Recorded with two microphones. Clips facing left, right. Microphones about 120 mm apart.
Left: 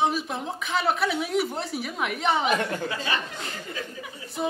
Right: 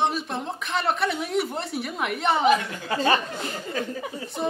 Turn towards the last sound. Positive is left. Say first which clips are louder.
# right 6 dB
turn(degrees=-40)  # may be behind; listen again after turning